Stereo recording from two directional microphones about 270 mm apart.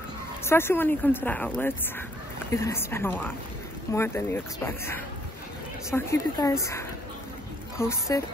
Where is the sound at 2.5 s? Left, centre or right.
Centre.